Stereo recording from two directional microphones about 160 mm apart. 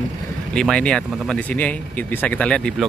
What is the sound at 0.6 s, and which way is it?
Speech, 5° left (ahead or behind).